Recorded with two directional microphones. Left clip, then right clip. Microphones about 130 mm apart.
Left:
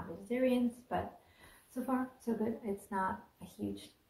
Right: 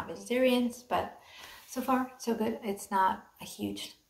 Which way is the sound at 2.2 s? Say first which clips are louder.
Right 5 dB; 15° right (ahead or behind).